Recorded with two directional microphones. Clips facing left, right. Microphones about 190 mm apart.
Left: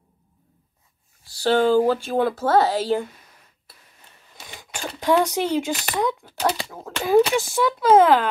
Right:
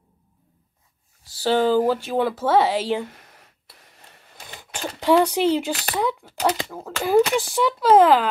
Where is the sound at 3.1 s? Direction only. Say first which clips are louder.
Right 3 dB; 75° right (ahead or behind).